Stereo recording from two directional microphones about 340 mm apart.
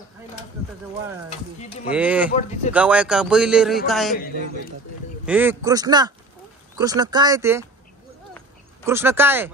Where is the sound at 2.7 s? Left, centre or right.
Centre.